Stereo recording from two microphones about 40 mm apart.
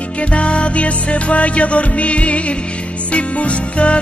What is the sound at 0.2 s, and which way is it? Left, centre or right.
Music, left.